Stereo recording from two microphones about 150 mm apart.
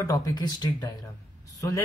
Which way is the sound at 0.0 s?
25° left (ahead or behind).